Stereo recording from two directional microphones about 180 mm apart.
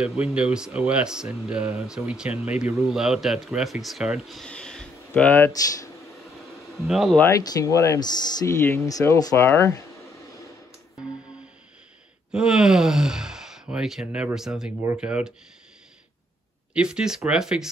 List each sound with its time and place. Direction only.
0.0 s speech: 5° right (ahead or behind); by 5.9 s 15° left (ahead or behind)
6.8 s speech: centre (ahead or behind)
7.2 s speech: 15° left (ahead or behind)
12.3 s speech: 5° right (ahead or behind)
16.7 s speech: 5° right (ahead or behind)